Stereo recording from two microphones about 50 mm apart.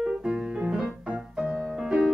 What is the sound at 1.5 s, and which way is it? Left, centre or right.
Music, centre.